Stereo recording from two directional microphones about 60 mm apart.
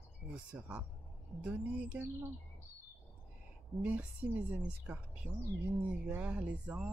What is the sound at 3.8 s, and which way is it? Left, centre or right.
A woman's voice, right.